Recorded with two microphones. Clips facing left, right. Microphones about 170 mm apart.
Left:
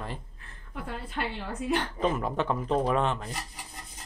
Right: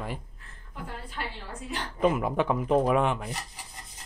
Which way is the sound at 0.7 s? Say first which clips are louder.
Left 3 dB; 65° left (ahead or behind).